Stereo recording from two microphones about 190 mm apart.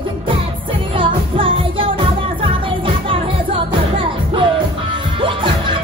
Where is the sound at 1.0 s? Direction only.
25° right (ahead or behind).